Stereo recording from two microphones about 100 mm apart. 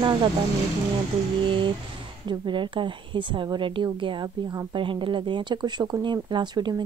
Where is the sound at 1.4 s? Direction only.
55° right (ahead or behind).